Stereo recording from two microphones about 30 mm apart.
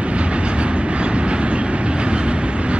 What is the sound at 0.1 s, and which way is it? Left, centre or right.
Train, right.